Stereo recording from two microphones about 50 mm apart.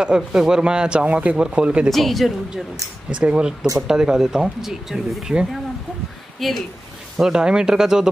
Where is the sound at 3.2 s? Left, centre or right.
Centre.